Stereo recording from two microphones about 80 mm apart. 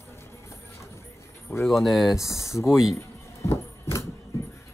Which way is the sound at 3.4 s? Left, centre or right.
Left.